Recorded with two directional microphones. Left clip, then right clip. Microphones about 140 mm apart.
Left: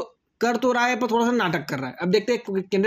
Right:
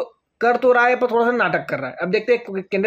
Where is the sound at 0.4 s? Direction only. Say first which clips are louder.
Right 6 dB; 25° left (ahead or behind).